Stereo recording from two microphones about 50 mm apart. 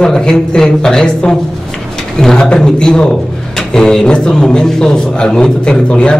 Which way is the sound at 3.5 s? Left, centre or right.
Centre.